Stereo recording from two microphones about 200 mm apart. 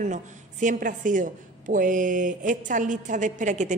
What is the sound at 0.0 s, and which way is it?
A woman's voice, 40° right (ahead or behind).